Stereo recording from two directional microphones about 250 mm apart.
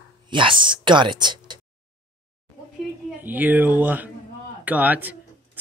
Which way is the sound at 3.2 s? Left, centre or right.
Centre.